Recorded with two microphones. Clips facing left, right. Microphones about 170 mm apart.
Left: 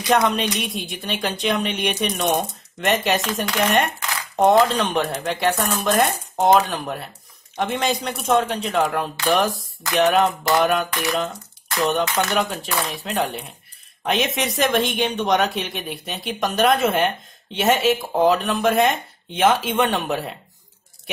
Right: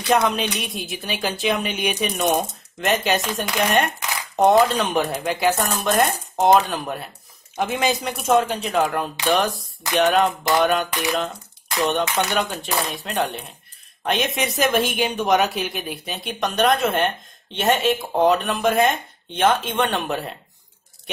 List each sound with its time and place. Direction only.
0.0 s speech: centre (ahead or behind)
10.9 s a sound: 15° right (ahead or behind)
12.3 s speech: centre (ahead or behind)